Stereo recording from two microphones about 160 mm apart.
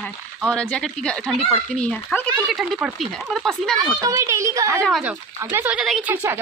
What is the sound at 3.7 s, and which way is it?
A woman's voice, 25° right (ahead or behind).